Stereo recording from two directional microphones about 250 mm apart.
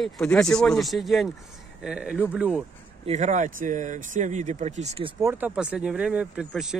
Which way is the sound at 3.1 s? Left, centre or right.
Right.